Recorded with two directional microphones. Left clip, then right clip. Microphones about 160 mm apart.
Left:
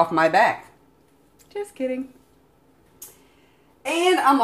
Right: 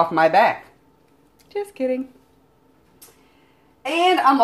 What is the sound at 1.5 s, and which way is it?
Speech, 30° right (ahead or behind).